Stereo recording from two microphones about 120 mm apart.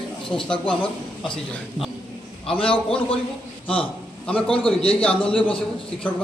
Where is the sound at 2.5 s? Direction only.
50° left (ahead or behind).